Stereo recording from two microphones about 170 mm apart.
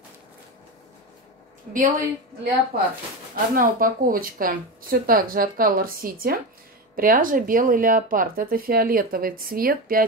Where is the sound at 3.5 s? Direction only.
55° right (ahead or behind).